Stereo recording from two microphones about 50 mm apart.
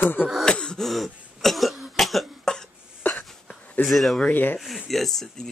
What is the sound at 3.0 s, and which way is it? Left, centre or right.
Hiccup, left.